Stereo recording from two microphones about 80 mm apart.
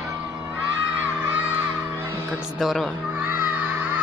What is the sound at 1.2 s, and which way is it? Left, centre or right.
Music, right.